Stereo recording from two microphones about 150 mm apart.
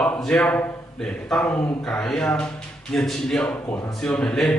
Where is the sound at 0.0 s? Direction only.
10° left (ahead or behind).